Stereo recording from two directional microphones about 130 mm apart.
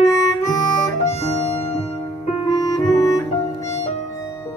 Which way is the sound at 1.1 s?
60° left (ahead or behind).